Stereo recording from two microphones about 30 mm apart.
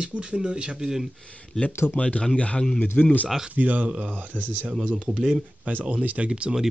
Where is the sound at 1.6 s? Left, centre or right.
Left.